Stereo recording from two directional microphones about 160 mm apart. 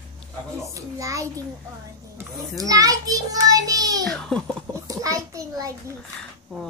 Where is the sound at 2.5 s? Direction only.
20° right (ahead or behind).